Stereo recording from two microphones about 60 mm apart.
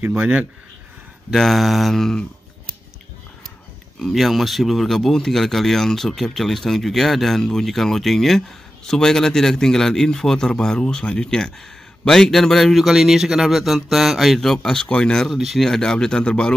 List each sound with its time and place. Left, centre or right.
0.2 s speech: centre
1.3 s speech: centre
4.0 s speech: centre
15.2 s speech: centre
15.6 s speech: centre